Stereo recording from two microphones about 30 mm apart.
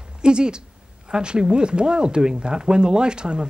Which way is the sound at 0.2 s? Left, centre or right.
Right.